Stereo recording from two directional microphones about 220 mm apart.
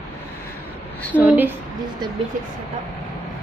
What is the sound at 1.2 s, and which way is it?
Speech, 10° right (ahead or behind).